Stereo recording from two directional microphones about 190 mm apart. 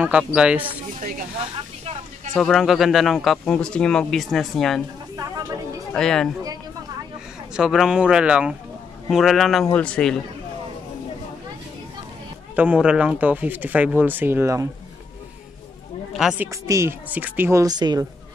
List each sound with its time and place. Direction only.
0.0 s speech: 5° right (ahead or behind)
2.3 s speech: centre (ahead or behind)
5.1 s a sound: 20° right (ahead or behind)
5.9 s speech: 5° left (ahead or behind)
7.5 s speech: centre (ahead or behind)
12.5 s speech: 5° right (ahead or behind)
16.1 s speech: 5° right (ahead or behind)
16.4 s speech: 15° right (ahead or behind)